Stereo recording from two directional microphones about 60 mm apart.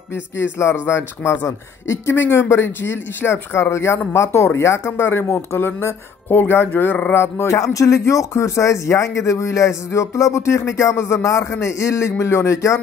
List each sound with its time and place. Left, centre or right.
0.1 s speech: left
4.8 s speech: left
7.4 s speech: left